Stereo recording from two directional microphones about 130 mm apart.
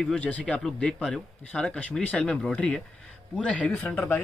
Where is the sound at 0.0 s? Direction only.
5° left (ahead or behind).